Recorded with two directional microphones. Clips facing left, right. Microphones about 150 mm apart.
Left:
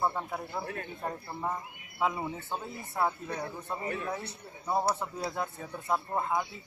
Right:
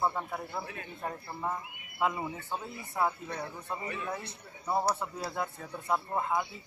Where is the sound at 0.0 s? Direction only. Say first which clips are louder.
Even; 5° left (ahead or behind).